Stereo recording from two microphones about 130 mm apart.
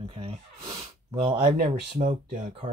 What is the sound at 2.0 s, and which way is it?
Speech, 85° right.